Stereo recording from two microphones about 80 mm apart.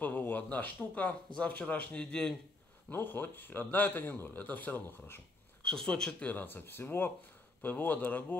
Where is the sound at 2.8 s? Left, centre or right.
Left.